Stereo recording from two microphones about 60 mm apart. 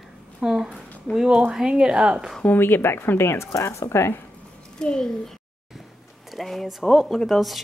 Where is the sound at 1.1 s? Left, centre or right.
Centre.